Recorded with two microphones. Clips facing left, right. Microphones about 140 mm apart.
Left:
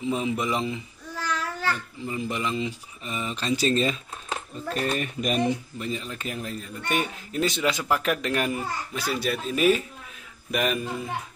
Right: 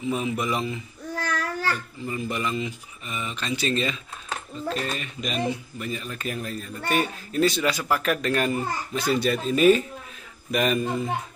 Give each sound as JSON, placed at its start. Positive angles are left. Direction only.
{"t": 0.0, "sound": "a man's voice", "side_deg": 25}
{"t": 1.1, "sound": "babbling", "side_deg": -50}
{"t": 2.0, "sound": "speech", "side_deg": 20}
{"t": 4.7, "sound": "speech", "side_deg": 50}
{"t": 5.8, "sound": "a man's voice", "side_deg": 25}